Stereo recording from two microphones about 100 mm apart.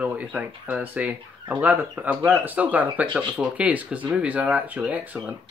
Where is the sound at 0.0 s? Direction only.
15° right (ahead or behind).